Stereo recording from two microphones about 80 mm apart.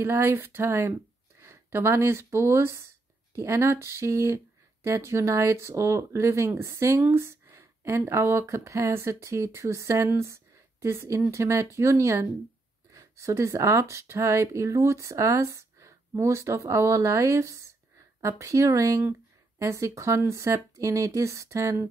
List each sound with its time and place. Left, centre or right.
0.0 s speech: right
7.0 s a sound: right
8.1 s speech: right